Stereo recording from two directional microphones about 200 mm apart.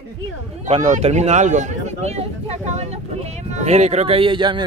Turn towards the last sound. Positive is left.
turn(degrees=-25)  # may be behind; listen again after turning